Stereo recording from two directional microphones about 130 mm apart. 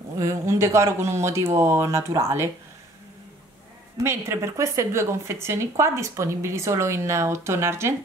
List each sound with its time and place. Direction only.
0.2 s speech: 25° right (ahead or behind)
4.0 s speech: 20° right (ahead or behind)